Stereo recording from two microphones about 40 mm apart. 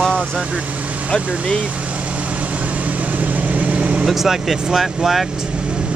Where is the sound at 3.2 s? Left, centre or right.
Right.